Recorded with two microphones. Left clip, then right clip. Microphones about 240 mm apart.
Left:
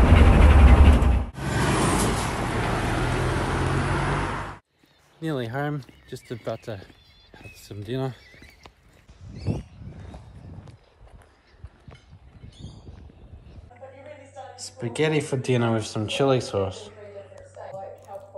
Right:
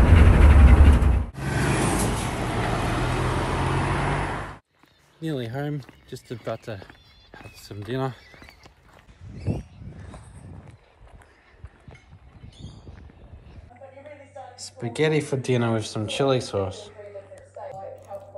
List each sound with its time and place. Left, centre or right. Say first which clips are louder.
0.0 s vehicle: left 2 dB; centre
5.2 s speech: left 2 dB; centre
12.5 s a sound: even; centre
14.8 s speech: right 1 dB; centre